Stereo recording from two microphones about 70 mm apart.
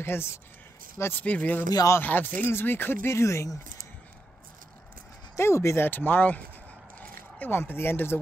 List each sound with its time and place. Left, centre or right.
0.0 s speech: left
1.2 s speech: left
3.1 s speech: left
5.3 s speech: left
5.9 s speech: left